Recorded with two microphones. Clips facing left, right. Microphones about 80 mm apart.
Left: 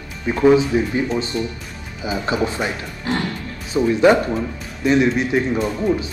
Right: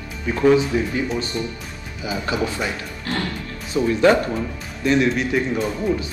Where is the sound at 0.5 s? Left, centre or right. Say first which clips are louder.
Left 2 dB; left.